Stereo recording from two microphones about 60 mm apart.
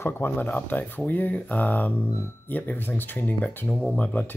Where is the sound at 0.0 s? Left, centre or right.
Left.